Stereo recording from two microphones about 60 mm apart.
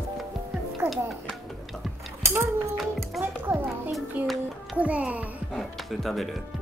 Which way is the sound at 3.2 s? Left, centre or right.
Right.